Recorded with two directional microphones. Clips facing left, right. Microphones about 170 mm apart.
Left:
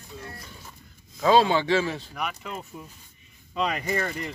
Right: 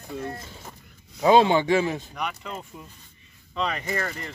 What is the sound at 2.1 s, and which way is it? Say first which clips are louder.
Speech: right 1 dB; 5° left (ahead or behind).